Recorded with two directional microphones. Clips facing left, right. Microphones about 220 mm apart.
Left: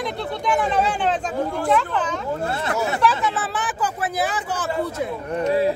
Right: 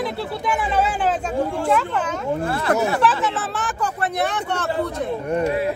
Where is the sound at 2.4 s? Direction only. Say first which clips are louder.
Right 2 dB; 25° left (ahead or behind).